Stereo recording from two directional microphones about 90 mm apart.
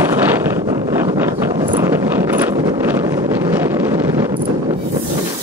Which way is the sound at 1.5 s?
60° right (ahead or behind).